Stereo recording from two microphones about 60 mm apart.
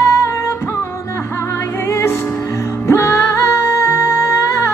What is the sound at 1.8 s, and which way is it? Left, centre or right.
Music, left.